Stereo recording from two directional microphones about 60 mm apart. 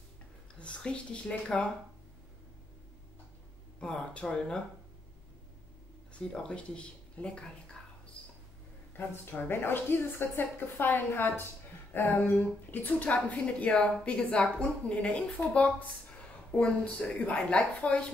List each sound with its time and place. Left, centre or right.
0.6 s a woman's voice: centre
3.8 s speech: centre
6.1 s speech: centre
9.2 s a woman's voice: left; by 15.4 s centre
16.5 s a woman's voice: left